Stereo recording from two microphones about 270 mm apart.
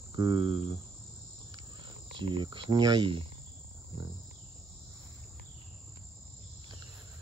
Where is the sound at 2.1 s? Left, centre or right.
Centre.